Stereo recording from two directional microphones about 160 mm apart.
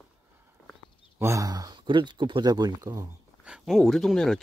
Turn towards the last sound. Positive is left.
turn(degrees=0)  # may be behind; listen again after turning